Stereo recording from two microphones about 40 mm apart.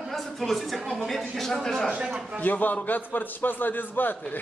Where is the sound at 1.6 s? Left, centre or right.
Centre.